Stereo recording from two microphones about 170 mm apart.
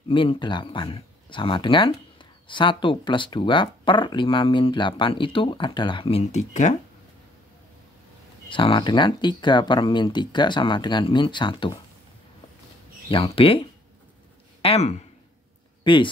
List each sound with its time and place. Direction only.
0.1 s speech: 30° left (ahead or behind)
8.5 s speech: 30° left (ahead or behind)
13.1 s speech: 30° left (ahead or behind)